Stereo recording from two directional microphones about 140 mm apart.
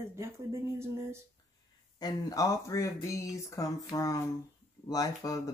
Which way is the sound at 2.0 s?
30° left (ahead or behind).